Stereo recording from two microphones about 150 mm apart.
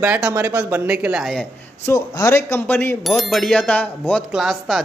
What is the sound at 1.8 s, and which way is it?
Speech, 20° left (ahead or behind).